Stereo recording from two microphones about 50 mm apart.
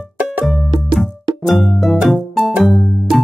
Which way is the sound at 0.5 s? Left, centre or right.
Centre.